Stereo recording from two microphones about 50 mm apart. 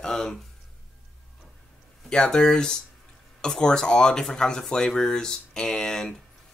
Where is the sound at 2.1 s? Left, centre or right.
Centre.